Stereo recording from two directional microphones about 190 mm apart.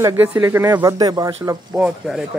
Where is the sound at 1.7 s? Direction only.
5° right (ahead or behind).